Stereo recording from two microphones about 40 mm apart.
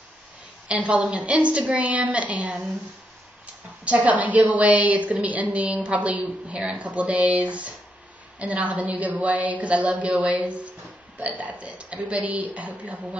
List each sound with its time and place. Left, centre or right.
0.7 s a woman's voice: right
3.8 s a woman's voice: right